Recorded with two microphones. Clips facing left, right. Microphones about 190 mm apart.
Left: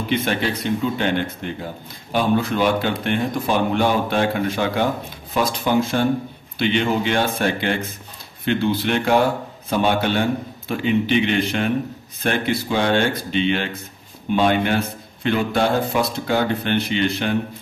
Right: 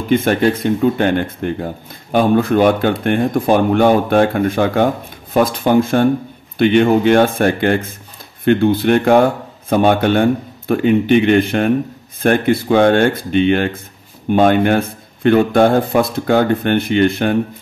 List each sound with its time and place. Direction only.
0.1 s speech: 45° right (ahead or behind)